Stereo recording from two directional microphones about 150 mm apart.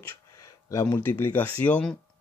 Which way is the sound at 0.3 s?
20° left (ahead or behind).